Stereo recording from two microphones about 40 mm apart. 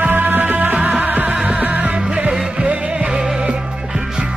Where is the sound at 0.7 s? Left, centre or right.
Right.